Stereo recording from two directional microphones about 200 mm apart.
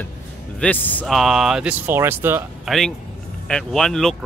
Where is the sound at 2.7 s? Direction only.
Centre (ahead or behind).